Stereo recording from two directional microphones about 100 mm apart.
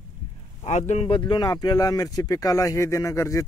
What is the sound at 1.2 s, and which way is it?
Speech, 45° left (ahead or behind).